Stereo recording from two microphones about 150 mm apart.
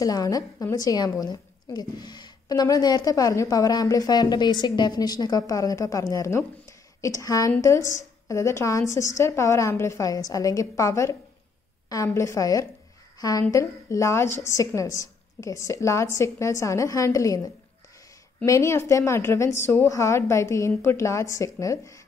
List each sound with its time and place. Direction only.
0.0 s a woman's voice: 25° left (ahead or behind)